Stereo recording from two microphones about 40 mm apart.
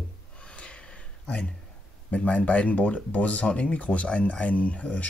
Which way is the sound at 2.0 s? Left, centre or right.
Left.